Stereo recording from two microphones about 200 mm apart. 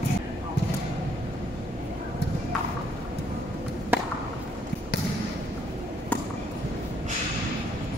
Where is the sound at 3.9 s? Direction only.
10° right (ahead or behind).